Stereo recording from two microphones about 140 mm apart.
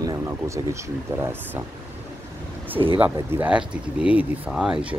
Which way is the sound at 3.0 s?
15° right (ahead or behind).